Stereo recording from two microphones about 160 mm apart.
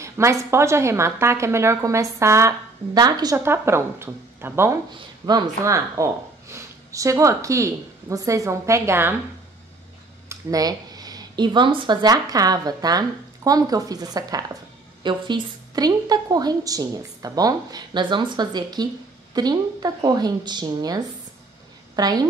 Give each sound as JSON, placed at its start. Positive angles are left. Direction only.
{"t": 0.0, "sound": "a woman's voice", "side_deg": -20}
{"t": 10.2, "sound": "a woman's voice", "side_deg": -20}